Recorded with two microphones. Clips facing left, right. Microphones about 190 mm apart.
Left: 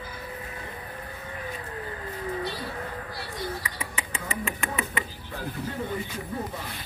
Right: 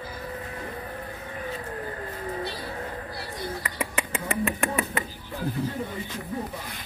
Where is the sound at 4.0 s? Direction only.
55° right (ahead or behind).